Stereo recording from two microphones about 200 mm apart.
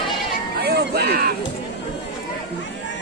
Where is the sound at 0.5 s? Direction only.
50° right (ahead or behind).